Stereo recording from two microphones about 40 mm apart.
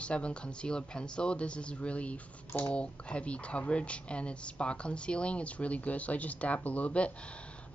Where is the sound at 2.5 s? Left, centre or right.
Left.